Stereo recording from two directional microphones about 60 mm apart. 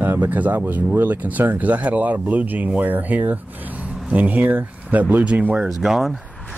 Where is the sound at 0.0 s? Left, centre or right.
Right.